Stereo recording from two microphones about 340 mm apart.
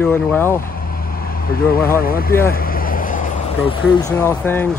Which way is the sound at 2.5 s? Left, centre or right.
Left.